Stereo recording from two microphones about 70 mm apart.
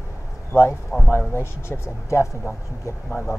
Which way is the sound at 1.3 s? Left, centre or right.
Left.